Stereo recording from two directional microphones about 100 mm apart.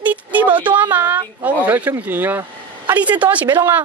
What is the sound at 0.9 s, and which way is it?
Speech, 20° right (ahead or behind).